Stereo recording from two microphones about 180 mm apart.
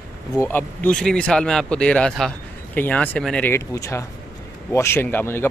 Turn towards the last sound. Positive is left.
turn(degrees=15)  # may be behind; listen again after turning